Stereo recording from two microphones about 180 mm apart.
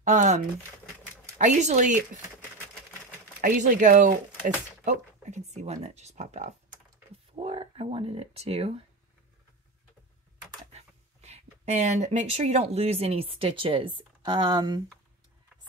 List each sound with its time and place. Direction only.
0.0 s speech: 40° right (ahead or behind)
1.4 s speech: 40° right (ahead or behind)
3.3 s speech: 50° right (ahead or behind); by 8.8 s 35° right (ahead or behind)
10.7 s speech: 35° right (ahead or behind)